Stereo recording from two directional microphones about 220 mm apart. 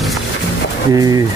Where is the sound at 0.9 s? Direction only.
15° right (ahead or behind).